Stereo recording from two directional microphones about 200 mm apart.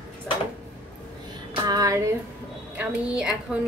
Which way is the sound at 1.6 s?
20° right (ahead or behind).